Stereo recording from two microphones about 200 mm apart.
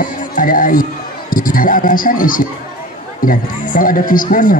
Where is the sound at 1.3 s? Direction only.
45° left (ahead or behind).